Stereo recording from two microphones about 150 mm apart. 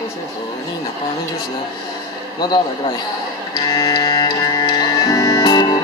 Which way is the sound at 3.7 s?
25° left (ahead or behind).